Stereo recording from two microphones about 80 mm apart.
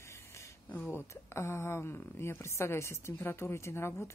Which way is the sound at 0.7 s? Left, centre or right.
Left.